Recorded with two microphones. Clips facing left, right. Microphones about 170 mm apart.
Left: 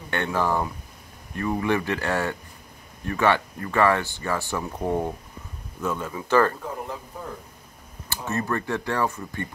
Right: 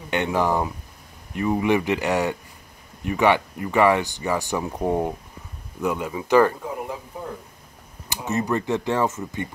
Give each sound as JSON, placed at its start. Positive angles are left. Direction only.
{"t": 0.1, "sound": "speech", "side_deg": -15}
{"t": 8.1, "sound": "speech", "side_deg": -20}